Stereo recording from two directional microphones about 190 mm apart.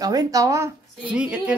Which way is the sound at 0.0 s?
20° right (ahead or behind).